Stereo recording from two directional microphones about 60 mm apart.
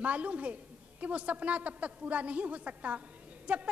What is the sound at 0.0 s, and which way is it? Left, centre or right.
Speech, right.